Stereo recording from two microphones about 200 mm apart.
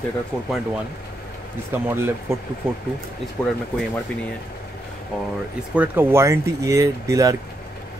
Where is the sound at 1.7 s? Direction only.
10° right (ahead or behind).